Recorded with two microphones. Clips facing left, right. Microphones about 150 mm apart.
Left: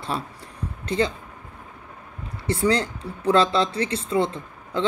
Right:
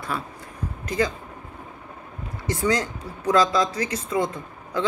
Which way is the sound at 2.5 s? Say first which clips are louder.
Left 2 dB; 30° left (ahead or behind).